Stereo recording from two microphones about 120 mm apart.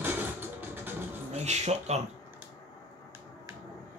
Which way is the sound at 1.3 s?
70° right (ahead or behind).